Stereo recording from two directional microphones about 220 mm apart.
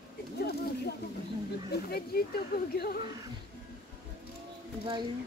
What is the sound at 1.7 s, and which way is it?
Speech, 45° left (ahead or behind).